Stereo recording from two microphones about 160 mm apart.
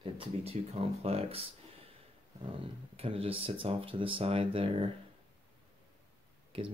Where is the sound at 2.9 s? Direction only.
35° right (ahead or behind).